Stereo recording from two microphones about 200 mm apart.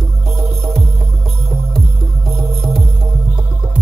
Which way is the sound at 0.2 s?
Centre (ahead or behind).